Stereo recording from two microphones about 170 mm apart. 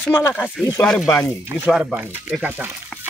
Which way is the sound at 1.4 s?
10° right (ahead or behind).